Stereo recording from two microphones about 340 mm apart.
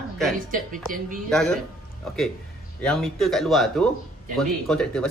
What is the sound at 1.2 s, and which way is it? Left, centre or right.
Speech, centre.